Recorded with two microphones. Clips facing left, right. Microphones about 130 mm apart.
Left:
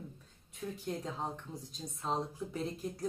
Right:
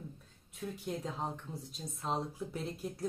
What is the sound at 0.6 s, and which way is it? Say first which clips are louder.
Speech: even; centre (ahead or behind).